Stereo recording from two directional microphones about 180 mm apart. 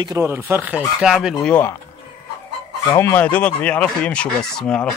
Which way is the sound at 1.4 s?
10° left (ahead or behind).